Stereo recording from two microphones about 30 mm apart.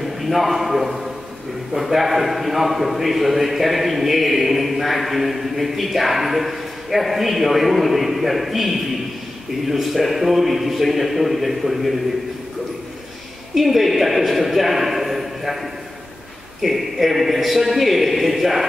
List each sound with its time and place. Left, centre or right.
0.0 s a man's voice: centre
13.6 s a man's voice: centre